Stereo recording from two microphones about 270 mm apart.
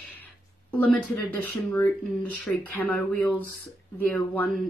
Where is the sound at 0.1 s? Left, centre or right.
Centre.